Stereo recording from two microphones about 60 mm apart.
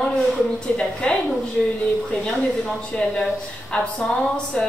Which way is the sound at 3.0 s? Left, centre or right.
Centre.